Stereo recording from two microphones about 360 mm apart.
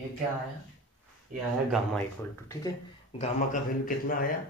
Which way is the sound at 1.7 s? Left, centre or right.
Centre.